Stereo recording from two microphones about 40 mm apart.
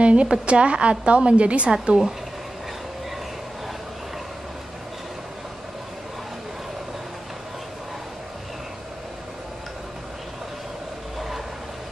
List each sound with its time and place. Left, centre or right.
0.0 s a woman's voice: right
11.1 s vehicle: centre